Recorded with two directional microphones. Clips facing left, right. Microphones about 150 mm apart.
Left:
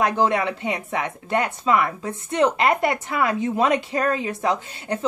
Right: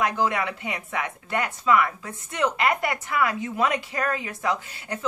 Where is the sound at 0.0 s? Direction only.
25° left (ahead or behind).